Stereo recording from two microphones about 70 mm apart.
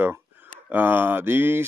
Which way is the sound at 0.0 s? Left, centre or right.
Right.